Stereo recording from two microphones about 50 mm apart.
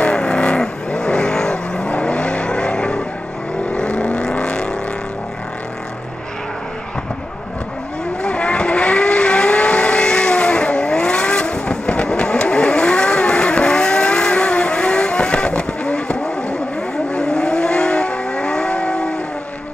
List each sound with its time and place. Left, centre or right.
0.0 s vehicle: centre
8.2 s vehicle: left